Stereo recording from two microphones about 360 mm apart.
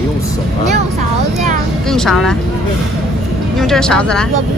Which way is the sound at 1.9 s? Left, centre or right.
Centre.